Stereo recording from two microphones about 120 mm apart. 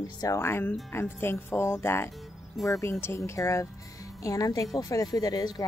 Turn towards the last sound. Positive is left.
turn(degrees=30)  # may be behind; listen again after turning